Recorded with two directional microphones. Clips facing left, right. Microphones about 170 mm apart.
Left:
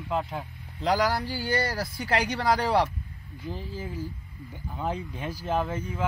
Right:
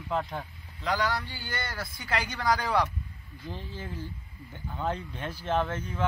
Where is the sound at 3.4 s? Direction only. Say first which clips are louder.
Left 4 dB; 10° left (ahead or behind).